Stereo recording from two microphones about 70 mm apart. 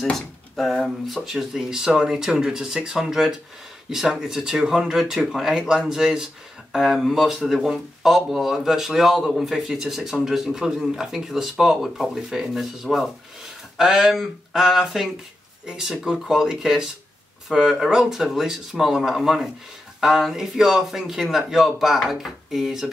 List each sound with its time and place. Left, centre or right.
0.0 s speech: centre